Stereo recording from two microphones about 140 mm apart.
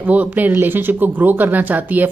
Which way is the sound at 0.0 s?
10° right (ahead or behind).